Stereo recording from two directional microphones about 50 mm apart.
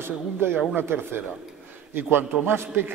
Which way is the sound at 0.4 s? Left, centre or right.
Right.